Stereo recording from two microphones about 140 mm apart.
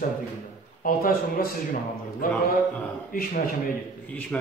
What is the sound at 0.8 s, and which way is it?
Speech, 90° left.